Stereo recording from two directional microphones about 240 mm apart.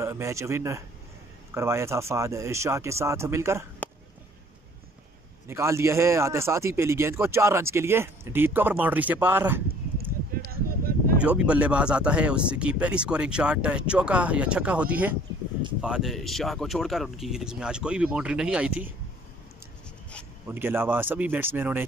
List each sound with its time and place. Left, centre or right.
0.0 s a man's voice: centre
5.5 s a man's voice: centre
9.9 s a sound: right
11.1 s speech: centre
20.4 s a man's voice: centre